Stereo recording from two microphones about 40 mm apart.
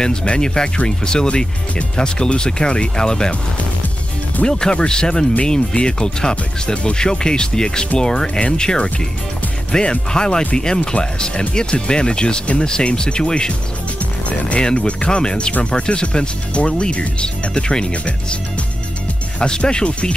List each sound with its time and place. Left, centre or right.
0.0 s speech: left
4.5 s speech: centre
14.6 s speech: left
19.4 s speech: left